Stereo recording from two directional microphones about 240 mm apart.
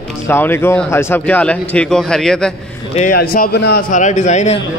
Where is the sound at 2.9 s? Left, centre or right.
Left.